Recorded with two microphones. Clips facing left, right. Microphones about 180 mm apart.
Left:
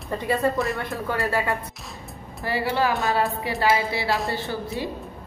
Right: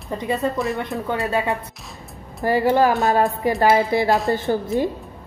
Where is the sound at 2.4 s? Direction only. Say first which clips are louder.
Right 7 dB; 45° right (ahead or behind).